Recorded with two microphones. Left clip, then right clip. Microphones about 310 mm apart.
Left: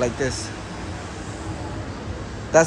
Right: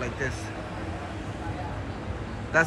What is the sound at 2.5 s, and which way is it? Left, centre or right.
Speech, centre.